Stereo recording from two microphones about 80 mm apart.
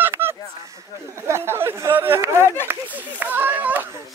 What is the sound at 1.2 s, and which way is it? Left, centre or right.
Chatter, right.